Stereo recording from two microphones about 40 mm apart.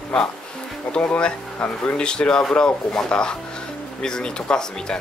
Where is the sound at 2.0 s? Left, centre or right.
Left.